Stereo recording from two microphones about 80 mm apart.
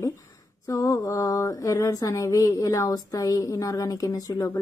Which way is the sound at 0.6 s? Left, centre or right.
Left.